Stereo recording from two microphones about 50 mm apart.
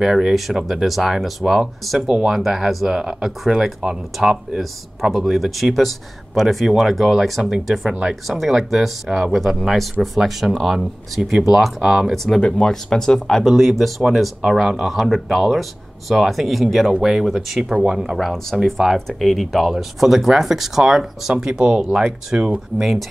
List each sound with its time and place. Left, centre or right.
0.0 s speech: centre
12.4 s speech: centre
13.4 s speech: centre
22.8 s speech: centre